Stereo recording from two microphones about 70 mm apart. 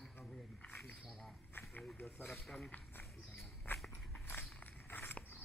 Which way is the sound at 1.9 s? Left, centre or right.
Left.